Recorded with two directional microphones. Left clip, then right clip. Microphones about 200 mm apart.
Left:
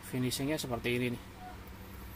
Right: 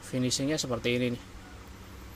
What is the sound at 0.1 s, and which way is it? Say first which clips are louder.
Speech: right 5 dB; 20° right (ahead or behind).